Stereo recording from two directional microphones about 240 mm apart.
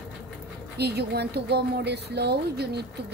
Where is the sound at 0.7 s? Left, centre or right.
Right.